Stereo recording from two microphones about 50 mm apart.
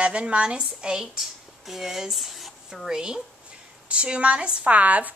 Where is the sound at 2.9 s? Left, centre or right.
Centre; by 5.1 s right.